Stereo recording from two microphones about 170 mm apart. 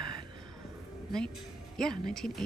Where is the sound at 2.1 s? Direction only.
5° left (ahead or behind).